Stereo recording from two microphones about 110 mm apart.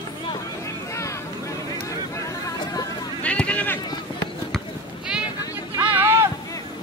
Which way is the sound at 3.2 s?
10° left (ahead or behind).